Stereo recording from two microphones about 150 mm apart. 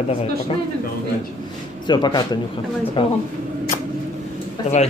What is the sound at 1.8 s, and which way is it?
Speech, 30° left (ahead or behind).